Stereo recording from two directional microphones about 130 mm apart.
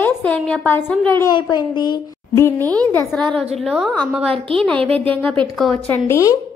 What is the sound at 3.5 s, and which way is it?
Speech, centre (ahead or behind).